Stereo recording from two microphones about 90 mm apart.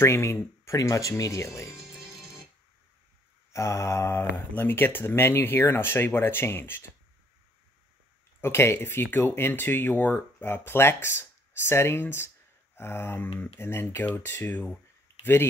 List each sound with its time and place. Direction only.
0.0 s speech: 30° left (ahead or behind)
1.8 s music: 5° right (ahead or behind)
3.5 s speech: 35° left (ahead or behind)
8.4 s speech: 30° left (ahead or behind)